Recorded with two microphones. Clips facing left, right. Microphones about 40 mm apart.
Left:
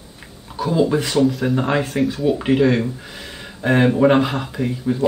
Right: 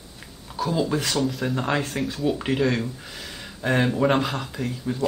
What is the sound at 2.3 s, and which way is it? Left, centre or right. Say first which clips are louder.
Speech: left 7 dB; centre.